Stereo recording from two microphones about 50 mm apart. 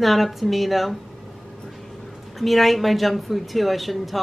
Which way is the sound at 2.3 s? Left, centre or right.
Centre.